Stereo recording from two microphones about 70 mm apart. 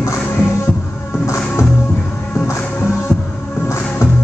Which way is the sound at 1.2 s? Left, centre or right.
Left.